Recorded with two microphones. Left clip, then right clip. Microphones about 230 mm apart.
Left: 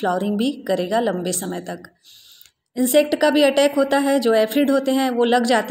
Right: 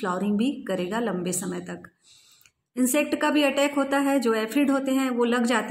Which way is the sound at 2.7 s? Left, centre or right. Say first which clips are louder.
Left 7 dB; centre.